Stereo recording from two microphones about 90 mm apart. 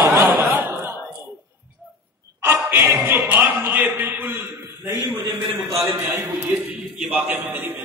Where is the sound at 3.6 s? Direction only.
20° right (ahead or behind).